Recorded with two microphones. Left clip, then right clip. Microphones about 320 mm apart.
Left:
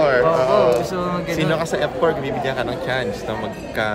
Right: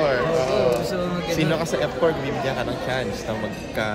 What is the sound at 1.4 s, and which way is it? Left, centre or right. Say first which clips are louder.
A man's voice: left 3 dB; centre.